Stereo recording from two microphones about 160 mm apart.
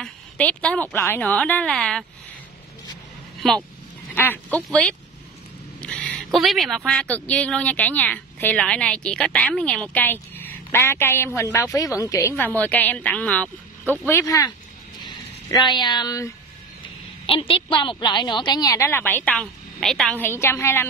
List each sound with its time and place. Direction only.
0.0 s a woman's voice: 5° left (ahead or behind)
4.1 s a woman's voice: 15° left (ahead or behind)
17.3 s a woman's voice: 35° left (ahead or behind); by 20.2 s centre (ahead or behind)
20.2 s a woman's voice: 15° left (ahead or behind)